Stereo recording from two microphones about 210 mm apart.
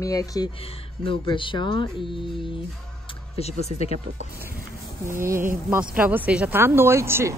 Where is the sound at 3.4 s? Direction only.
30° left (ahead or behind).